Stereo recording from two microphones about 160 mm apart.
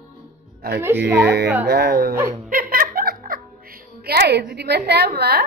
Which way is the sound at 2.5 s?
65° right (ahead or behind).